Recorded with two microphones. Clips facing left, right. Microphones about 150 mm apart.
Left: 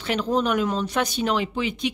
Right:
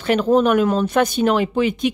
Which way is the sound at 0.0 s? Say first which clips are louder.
Right 8 dB; 50° right (ahead or behind).